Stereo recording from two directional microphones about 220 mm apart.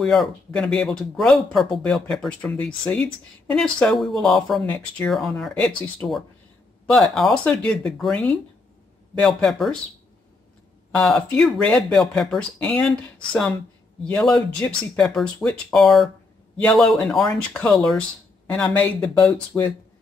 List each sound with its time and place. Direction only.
0.0 s speech: centre (ahead or behind)
11.0 s speech: 5° left (ahead or behind)
19.2 s speech: 10° left (ahead or behind)